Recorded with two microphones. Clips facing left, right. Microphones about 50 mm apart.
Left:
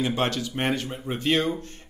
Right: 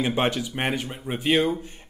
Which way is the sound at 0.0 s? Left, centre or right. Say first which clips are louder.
Right 2 dB; centre.